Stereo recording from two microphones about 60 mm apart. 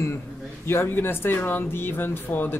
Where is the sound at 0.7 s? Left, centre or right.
Left.